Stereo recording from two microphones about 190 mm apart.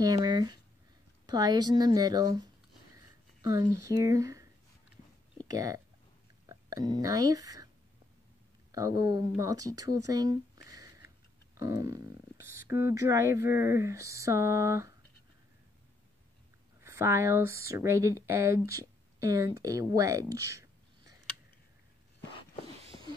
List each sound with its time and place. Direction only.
0.0 s speech: 20° right (ahead or behind)
5.5 s speech: 20° right (ahead or behind)
8.7 s speech: 20° right (ahead or behind)
16.8 s speech: 15° right (ahead or behind)